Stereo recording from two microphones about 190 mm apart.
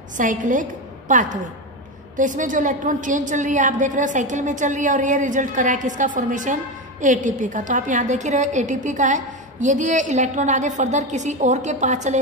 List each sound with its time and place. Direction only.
0.2 s a woman's voice: 45° right (ahead or behind)